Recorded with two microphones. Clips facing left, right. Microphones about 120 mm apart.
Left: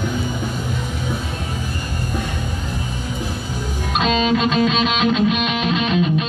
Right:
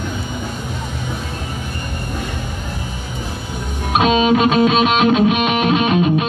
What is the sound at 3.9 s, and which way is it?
Music, 60° right (ahead or behind).